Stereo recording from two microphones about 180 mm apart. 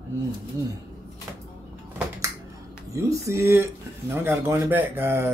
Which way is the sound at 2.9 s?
15° right (ahead or behind).